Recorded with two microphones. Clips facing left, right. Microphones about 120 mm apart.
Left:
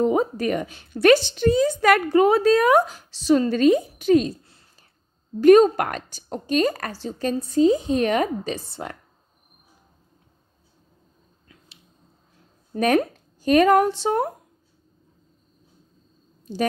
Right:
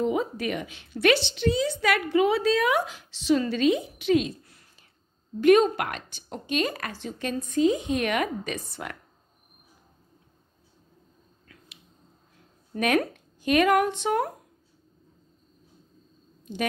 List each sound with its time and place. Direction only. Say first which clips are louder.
0.0 s a woman's voice: left 5 dB; 40° left (ahead or behind)
12.7 s speech: left 4 dB; 35° left (ahead or behind)